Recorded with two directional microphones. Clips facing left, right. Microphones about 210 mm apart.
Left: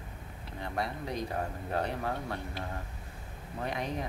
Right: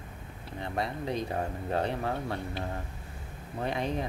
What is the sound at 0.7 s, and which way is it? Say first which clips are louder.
Speech: right 3 dB; 25° right (ahead or behind).